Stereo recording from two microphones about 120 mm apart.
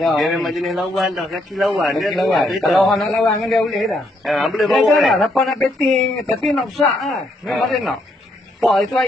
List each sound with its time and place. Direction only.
0.0 s a man's voice: centre (ahead or behind)